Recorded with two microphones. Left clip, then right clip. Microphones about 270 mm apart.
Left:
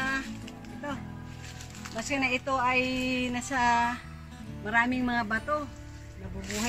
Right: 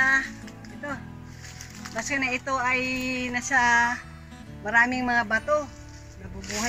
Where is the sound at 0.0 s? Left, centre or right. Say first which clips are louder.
Right 10 dB; centre.